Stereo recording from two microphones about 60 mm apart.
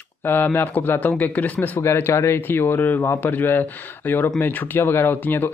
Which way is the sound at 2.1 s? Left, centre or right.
Left.